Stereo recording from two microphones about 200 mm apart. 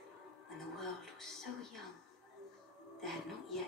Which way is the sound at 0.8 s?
Centre (ahead or behind).